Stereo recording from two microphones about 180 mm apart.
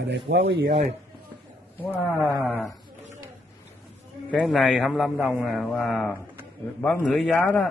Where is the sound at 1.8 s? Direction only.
10° left (ahead or behind).